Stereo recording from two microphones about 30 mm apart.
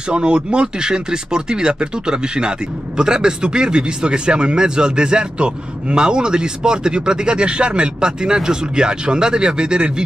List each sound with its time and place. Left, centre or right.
0.1 s speech: right